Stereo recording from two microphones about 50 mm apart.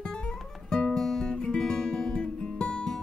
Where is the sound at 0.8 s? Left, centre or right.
Left.